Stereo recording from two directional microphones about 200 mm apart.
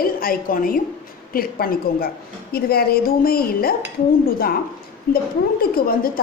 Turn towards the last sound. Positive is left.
turn(degrees=45)  # may be behind; listen again after turning